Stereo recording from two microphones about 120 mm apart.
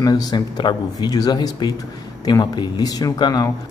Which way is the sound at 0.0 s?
35° left (ahead or behind).